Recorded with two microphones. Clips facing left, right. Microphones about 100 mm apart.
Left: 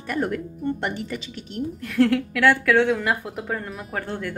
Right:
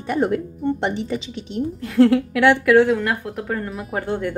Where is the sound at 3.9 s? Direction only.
20° right (ahead or behind).